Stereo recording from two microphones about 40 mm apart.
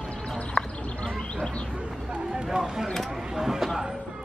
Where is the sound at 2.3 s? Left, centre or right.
Centre.